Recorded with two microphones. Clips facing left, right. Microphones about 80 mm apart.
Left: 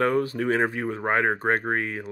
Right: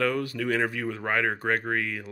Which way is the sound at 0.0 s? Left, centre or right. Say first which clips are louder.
Left 4 dB; left.